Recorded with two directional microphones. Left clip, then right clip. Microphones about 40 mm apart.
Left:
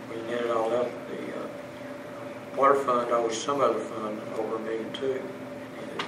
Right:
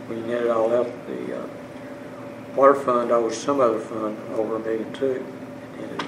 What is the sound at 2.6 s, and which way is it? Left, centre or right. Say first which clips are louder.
Speech: right 5 dB; right.